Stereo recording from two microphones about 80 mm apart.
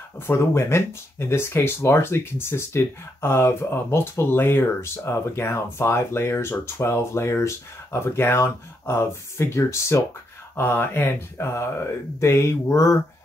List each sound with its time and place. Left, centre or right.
0.3 s speech: left